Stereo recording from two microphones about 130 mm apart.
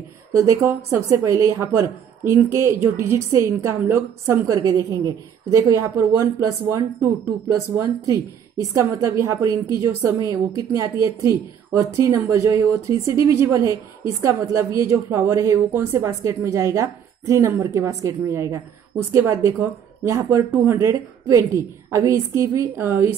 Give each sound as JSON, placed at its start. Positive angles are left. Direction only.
{"t": 0.3, "sound": "a woman's voice", "side_deg": -25}
{"t": 4.6, "sound": "a woman's voice", "side_deg": -30}